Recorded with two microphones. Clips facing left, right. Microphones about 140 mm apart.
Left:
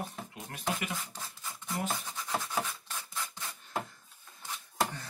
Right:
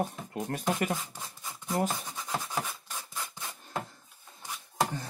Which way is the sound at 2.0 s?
15° right (ahead or behind).